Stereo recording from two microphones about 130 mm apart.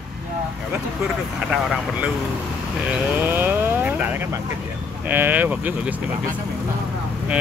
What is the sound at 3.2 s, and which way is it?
Vehicle, 15° right (ahead or behind).